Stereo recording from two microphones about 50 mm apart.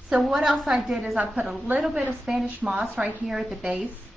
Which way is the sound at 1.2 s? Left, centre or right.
Right.